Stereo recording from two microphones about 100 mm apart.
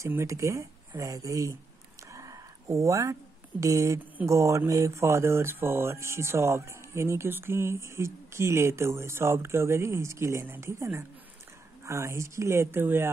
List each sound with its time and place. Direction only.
0.0 s speech: 30° right (ahead or behind)
2.1 s a sound: 35° right (ahead or behind)
4.3 s speech: 30° right (ahead or behind)